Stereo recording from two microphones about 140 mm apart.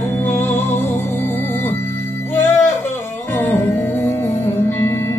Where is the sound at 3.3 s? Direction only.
15° left (ahead or behind).